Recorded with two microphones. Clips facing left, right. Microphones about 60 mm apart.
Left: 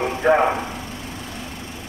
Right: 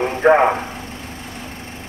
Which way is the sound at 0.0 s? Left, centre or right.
Right.